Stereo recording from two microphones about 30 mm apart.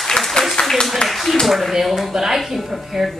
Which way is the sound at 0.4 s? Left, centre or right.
Left.